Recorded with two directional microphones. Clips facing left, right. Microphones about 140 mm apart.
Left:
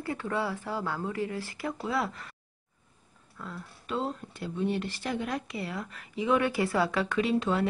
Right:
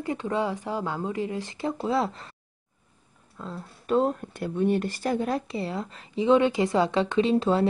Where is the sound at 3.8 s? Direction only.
50° right (ahead or behind).